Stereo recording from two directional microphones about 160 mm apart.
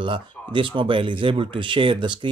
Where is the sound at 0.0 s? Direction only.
30° right (ahead or behind).